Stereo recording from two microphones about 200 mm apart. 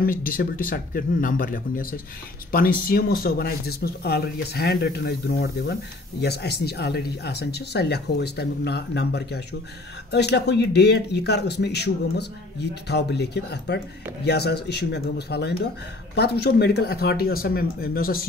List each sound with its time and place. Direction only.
0.0 s speech: 45° left (ahead or behind)